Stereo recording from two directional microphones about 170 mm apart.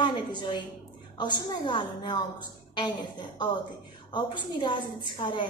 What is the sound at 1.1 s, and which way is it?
A woman's voice, 25° left (ahead or behind).